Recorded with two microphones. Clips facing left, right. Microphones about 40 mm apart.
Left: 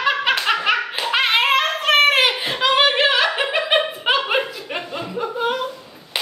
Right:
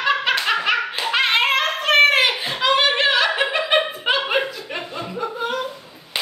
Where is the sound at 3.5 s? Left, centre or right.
Centre.